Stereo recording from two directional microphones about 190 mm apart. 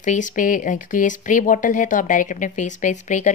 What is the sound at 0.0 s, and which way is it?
Speech, 40° left (ahead or behind).